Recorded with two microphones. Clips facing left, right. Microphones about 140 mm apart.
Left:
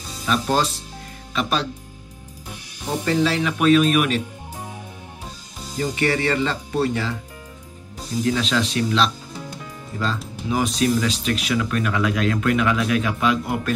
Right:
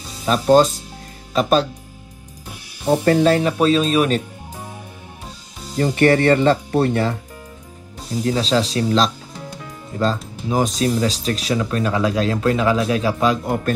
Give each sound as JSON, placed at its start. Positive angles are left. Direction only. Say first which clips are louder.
{"t": 0.2, "sound": "speech", "louder": "right 8 dB", "side_deg": -40}
{"t": 3.1, "sound": "speech", "louder": "right 4 dB", "side_deg": -50}
{"t": 5.8, "sound": "speech", "louder": "right 7 dB", "side_deg": -55}
{"t": 8.3, "sound": "speech", "louder": "right 4 dB", "side_deg": -35}